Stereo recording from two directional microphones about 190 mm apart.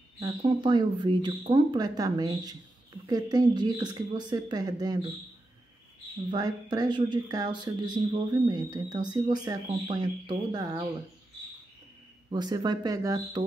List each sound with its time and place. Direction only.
0.2 s a woman's voice: 25° right (ahead or behind)
6.3 s a woman's voice: 20° right (ahead or behind)
12.3 s a woman's voice: 20° right (ahead or behind)